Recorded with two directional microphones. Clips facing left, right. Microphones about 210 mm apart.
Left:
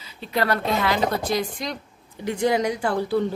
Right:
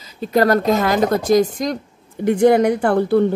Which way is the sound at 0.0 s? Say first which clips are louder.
Right 9 dB; 45° right (ahead or behind).